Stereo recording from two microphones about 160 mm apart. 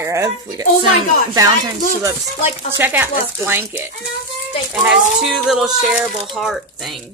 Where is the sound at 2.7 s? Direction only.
10° right (ahead or behind).